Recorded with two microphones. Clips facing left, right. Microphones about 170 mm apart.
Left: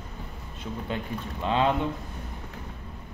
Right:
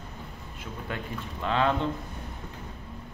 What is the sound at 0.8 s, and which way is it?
Speech, 20° left (ahead or behind).